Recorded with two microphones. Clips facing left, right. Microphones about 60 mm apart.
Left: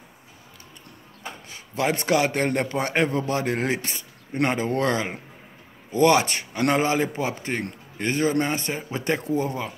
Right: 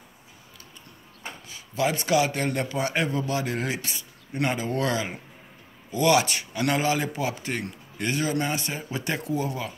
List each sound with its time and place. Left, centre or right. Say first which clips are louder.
1.5 s a man's voice: left 1 dB; left